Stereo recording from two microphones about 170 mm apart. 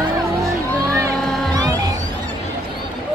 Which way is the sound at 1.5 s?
20° right (ahead or behind).